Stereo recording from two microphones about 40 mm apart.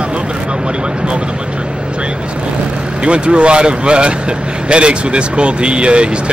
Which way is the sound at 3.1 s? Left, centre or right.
Right.